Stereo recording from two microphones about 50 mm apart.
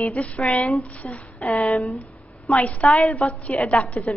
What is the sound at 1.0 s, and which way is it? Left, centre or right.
Speech, left.